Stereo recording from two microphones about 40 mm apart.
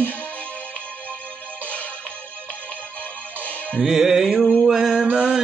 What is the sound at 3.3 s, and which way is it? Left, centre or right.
Music, left.